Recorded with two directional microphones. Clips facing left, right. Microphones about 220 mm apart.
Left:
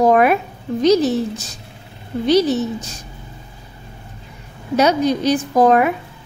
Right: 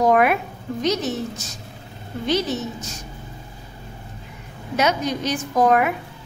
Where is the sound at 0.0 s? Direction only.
35° left (ahead or behind).